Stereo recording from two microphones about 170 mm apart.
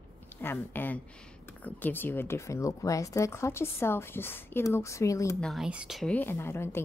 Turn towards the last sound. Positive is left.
turn(degrees=15)  # may be behind; listen again after turning